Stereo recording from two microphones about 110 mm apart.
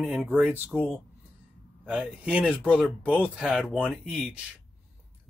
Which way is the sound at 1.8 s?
10° right (ahead or behind).